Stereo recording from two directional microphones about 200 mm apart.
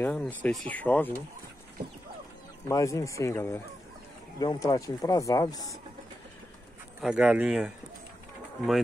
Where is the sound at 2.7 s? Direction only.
15° left (ahead or behind).